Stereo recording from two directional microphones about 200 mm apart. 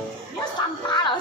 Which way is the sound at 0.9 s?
25° left (ahead or behind).